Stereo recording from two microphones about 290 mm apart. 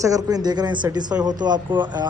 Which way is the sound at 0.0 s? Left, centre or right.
Centre.